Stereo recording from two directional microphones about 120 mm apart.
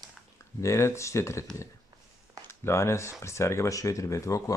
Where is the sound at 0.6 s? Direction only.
25° left (ahead or behind).